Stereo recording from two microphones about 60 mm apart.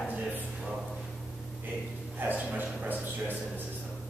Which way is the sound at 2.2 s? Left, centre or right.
Right.